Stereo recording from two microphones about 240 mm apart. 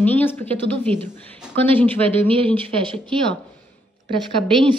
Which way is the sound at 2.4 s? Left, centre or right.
Centre.